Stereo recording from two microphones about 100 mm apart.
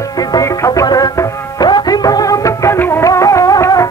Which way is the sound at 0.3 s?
35° left (ahead or behind).